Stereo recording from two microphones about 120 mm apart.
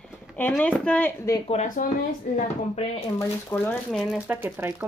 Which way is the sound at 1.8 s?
90° left.